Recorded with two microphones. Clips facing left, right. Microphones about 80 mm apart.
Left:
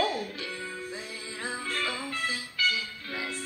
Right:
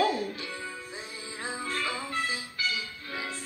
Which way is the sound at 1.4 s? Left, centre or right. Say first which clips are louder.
Even; right.